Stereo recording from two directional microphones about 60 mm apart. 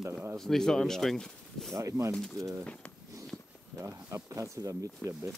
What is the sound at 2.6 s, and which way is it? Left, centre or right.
Speech, left.